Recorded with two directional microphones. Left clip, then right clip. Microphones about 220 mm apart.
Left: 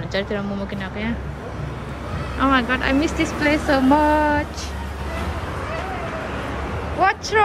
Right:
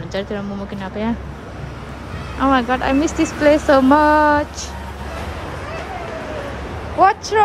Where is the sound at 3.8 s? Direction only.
40° left (ahead or behind).